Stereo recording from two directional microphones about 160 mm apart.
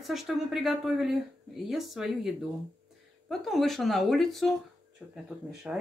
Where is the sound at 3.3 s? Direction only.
Centre (ahead or behind).